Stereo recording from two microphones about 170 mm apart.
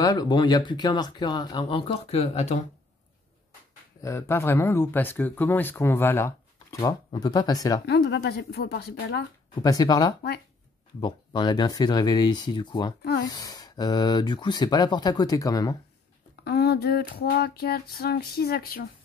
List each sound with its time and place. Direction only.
0.0 s speech: 25° left (ahead or behind); by 2.6 s 40° left (ahead or behind)
4.0 s speech: 15° left (ahead or behind)
7.8 s speech: 80° left
9.6 s speech: 20° left (ahead or behind)
16.4 s a sound: 70° left (ahead or behind)